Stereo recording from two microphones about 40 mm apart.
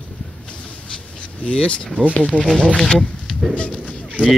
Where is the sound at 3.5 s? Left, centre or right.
Left.